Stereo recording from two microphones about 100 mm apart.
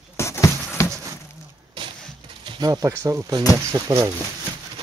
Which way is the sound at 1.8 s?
55° right (ahead or behind).